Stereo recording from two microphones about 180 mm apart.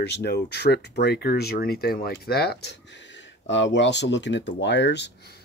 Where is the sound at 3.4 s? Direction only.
90° left; by 5.1 s 75° left (ahead or behind).